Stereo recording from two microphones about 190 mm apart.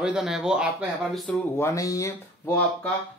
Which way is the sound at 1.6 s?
15° left (ahead or behind).